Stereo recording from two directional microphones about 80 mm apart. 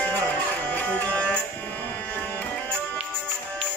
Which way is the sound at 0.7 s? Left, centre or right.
Centre.